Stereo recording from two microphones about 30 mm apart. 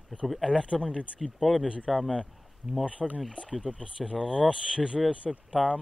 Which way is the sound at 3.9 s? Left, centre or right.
Right.